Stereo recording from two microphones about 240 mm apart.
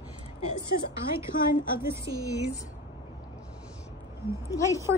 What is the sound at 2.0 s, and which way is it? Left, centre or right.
Speech, right.